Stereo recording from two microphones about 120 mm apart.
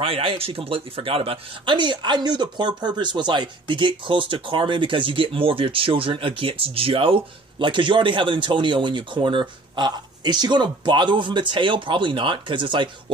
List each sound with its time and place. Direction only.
0.0 s speech: 50° right (ahead or behind)